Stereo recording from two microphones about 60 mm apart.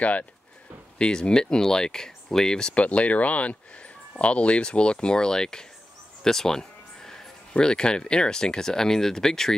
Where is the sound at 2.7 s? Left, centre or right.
Left.